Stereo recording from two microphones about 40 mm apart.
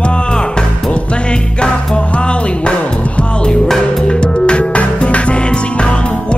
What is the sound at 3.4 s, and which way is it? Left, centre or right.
Music, centre.